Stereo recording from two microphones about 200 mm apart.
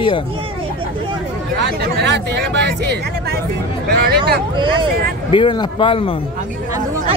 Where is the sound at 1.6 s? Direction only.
60° right (ahead or behind).